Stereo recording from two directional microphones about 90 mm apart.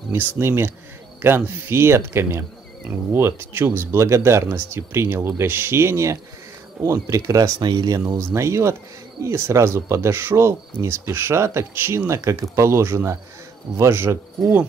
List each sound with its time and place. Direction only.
0.1 s speech: 25° right (ahead or behind)
7.6 s speech: 50° right (ahead or behind)
8.2 s speech: 30° right (ahead or behind)